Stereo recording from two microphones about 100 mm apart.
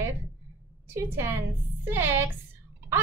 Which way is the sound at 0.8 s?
25° right (ahead or behind).